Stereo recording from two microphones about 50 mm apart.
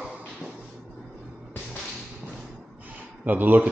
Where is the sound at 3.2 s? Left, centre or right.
Right.